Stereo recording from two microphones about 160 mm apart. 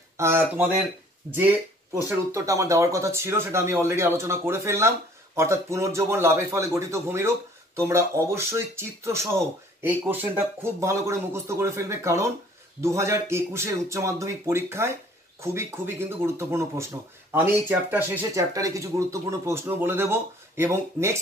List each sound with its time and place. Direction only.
0.2 s speech: 15° right (ahead or behind)
2.0 s speech: 20° right (ahead or behind)